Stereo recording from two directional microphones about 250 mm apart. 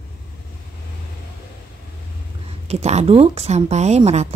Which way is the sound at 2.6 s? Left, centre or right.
Right.